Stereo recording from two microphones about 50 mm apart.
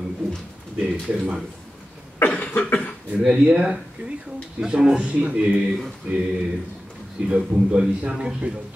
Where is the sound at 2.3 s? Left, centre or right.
Left.